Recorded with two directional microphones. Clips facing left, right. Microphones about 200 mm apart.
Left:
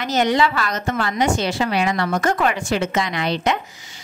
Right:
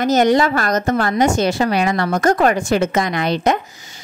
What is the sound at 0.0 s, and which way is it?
A woman's voice, 45° right (ahead or behind).